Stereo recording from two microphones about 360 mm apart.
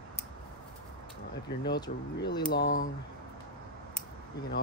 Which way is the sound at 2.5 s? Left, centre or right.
Left.